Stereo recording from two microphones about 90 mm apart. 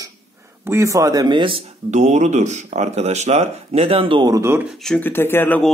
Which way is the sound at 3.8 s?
90° right.